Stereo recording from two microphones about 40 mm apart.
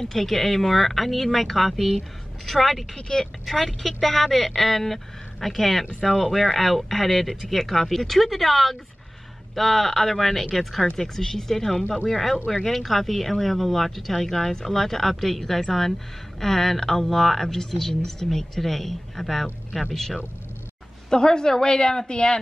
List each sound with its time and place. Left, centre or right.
0.1 s speech: centre
21.1 s a woman's voice: centre